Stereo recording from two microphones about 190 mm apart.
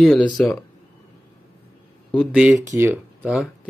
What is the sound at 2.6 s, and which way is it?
Speech, 15° right (ahead or behind).